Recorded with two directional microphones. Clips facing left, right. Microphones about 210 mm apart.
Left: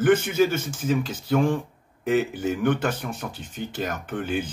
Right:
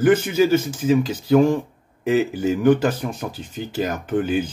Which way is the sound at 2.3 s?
35° right (ahead or behind).